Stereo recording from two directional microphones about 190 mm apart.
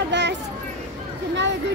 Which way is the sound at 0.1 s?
65° right (ahead or behind).